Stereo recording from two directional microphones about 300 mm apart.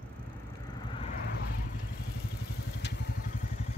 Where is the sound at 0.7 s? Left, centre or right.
Centre.